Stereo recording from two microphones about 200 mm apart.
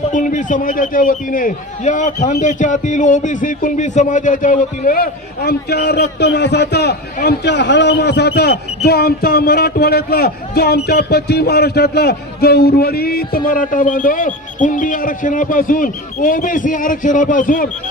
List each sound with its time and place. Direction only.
0.1 s a man's voice: 40° left (ahead or behind)